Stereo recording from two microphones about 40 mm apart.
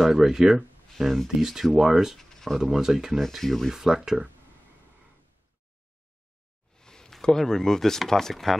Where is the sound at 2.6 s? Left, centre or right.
Centre.